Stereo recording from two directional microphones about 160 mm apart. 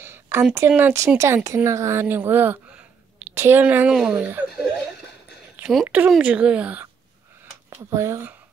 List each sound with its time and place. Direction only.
0.0 s a sound: 15° right (ahead or behind)
0.6 s speech: 15° right (ahead or behind)
5.6 s speech: 5° right (ahead or behind)